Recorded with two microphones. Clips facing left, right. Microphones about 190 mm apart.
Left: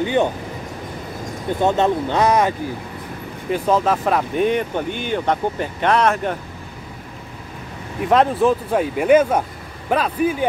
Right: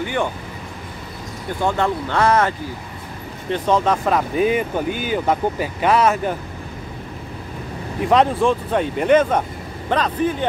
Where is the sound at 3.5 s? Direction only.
5° left (ahead or behind).